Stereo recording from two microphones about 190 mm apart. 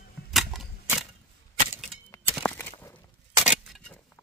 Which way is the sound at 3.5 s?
Centre (ahead or behind).